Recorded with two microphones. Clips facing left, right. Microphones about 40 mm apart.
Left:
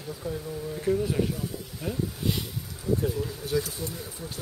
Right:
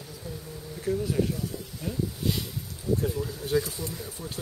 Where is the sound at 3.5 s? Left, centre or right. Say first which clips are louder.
Right 2 dB; centre.